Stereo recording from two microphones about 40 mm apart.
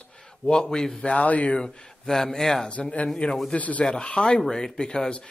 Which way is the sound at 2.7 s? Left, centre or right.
Left.